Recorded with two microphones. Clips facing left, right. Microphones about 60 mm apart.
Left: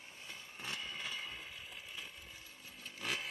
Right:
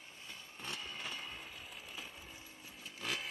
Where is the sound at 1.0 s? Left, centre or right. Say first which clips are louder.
Left 1 dB; centre.